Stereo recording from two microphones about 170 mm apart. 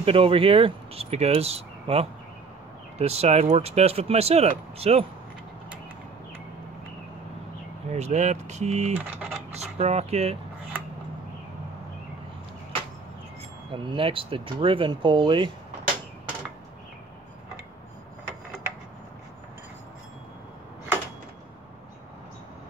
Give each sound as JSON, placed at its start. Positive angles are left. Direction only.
{"t": 0.0, "sound": "speech", "side_deg": -35}
{"t": 7.9, "sound": "speech", "side_deg": -40}
{"t": 8.9, "sound": "typing", "side_deg": -10}
{"t": 9.5, "sound": "speech", "side_deg": -40}
{"t": 13.7, "sound": "speech", "side_deg": -30}